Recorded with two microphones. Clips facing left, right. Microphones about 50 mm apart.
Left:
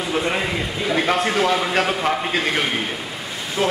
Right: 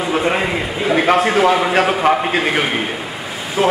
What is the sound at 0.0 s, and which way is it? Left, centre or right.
A man's voice, centre.